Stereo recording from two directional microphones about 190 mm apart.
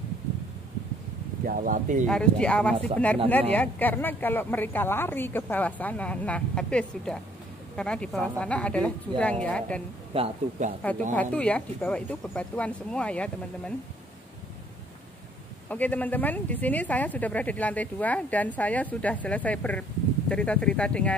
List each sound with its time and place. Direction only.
1.4 s speech: 45° right (ahead or behind)
2.0 s a woman's voice: 5° left (ahead or behind)
10.1 s a man's voice: 30° right (ahead or behind)
11.1 s speech: 5° left (ahead or behind)
15.7 s a woman's voice: 10° left (ahead or behind)